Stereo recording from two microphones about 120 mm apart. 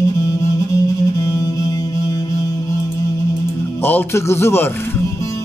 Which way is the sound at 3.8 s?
20° left (ahead or behind).